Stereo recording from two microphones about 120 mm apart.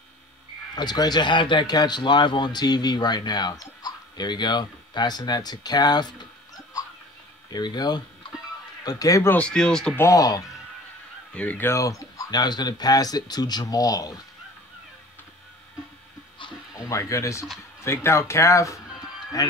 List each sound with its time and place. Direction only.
0.7 s speech: 35° left (ahead or behind)
9.3 s speech: 10° left (ahead or behind)
9.9 s speech: 25° left (ahead or behind)
11.3 s speech: 15° left (ahead or behind); by 14.2 s 30° left (ahead or behind)
16.7 s speech: 25° left (ahead or behind)